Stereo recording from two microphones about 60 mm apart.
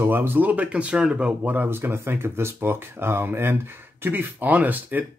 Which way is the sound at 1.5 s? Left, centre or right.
Right.